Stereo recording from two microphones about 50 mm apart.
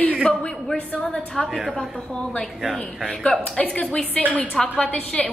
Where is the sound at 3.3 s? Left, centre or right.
Left.